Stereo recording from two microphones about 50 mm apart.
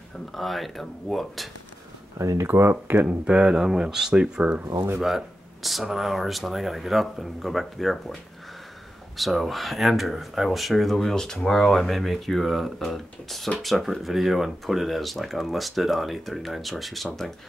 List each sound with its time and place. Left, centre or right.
0.3 s speech: centre
2.1 s speech: right
2.4 s speech: right
3.3 s speech: right
3.5 s speech: centre
5.0 s speech: centre